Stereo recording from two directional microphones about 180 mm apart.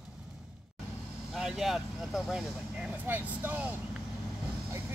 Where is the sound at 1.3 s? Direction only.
Centre (ahead or behind).